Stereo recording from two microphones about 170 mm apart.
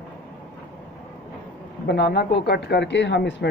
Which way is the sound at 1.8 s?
75° left (ahead or behind).